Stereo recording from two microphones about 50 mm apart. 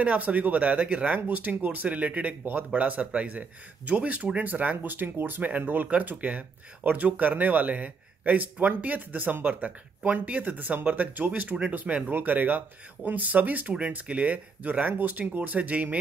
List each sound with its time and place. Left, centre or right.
0.0 s speech: right